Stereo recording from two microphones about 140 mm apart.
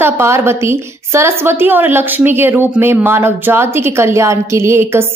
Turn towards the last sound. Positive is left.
turn(degrees=-20)  # may be behind; listen again after turning